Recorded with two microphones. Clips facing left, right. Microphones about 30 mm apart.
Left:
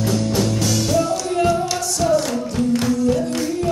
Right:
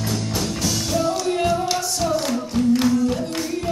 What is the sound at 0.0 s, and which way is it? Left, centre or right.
Music, centre.